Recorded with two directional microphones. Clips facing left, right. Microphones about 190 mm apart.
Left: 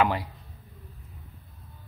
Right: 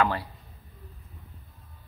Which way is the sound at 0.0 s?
15° left (ahead or behind).